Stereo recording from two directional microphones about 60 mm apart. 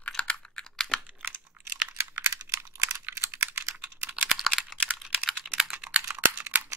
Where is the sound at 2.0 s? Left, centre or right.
Right.